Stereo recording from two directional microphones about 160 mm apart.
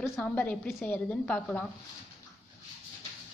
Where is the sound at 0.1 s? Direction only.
10° left (ahead or behind).